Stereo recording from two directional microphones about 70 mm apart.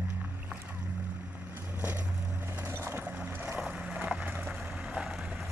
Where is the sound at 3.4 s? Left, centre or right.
Centre.